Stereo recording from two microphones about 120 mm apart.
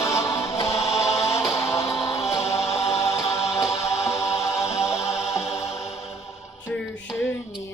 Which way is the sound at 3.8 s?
25° left (ahead or behind).